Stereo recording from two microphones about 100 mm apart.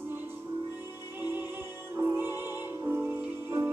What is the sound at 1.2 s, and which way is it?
Music, 20° right (ahead or behind).